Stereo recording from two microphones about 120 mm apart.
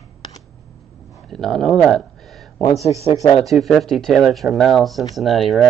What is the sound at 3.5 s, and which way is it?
Speech, centre (ahead or behind).